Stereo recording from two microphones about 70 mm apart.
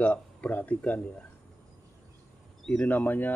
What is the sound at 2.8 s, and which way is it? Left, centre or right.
Speech, left.